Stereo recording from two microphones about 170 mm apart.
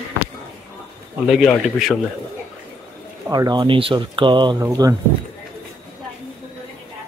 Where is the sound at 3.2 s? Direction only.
25° right (ahead or behind).